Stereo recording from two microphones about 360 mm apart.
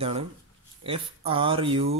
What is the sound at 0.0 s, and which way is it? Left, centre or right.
Speech, centre.